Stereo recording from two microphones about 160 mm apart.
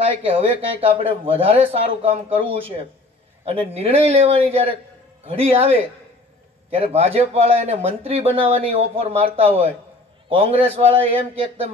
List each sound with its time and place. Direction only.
0.1 s a man's voice: 35° right (ahead or behind)